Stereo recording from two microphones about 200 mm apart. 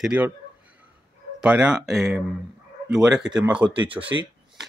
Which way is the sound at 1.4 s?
5° right (ahead or behind).